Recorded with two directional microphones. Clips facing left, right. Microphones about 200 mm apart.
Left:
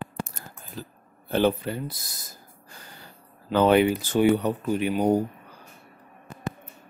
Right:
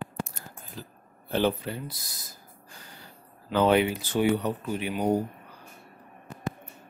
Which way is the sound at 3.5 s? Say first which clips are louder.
Left 3 dB; 50° left (ahead or behind).